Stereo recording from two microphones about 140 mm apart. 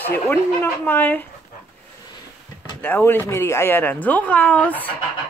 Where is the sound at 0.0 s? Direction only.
15° left (ahead or behind).